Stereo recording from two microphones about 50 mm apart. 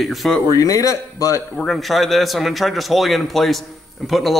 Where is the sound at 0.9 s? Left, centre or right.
Left.